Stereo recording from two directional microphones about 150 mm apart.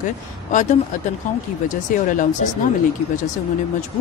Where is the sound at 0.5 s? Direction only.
55° left (ahead or behind).